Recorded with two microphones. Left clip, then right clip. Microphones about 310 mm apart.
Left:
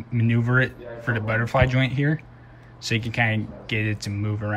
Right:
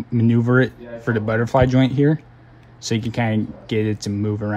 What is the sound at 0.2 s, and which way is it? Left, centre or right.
Speech, centre.